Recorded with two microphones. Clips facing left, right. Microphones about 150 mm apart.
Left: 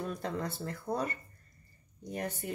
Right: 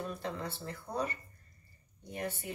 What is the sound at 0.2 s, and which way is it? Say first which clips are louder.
Speech: left 3 dB; 45° left (ahead or behind).